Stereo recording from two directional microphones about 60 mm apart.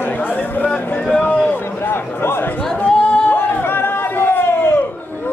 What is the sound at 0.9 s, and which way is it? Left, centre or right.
Speech, centre.